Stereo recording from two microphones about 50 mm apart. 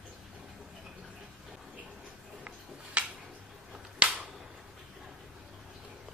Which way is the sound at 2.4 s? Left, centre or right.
Right.